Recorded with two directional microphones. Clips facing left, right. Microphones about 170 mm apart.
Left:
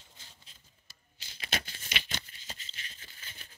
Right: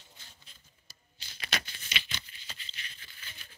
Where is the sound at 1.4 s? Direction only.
30° left (ahead or behind).